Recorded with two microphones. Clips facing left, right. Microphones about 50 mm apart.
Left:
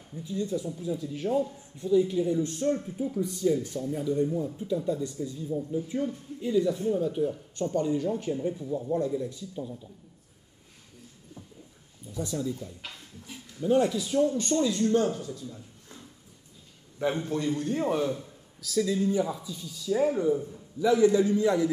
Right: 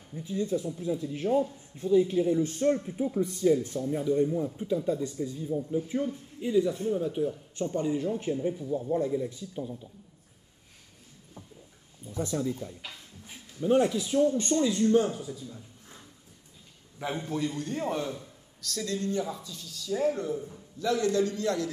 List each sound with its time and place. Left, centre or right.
0.1 s speech: right
3.0 s speech: right
12.1 s speech: right
13.8 s speech: centre
17.0 s a man's voice: centre